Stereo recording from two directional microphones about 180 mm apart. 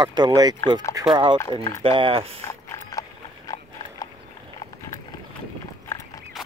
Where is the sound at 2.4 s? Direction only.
15° left (ahead or behind).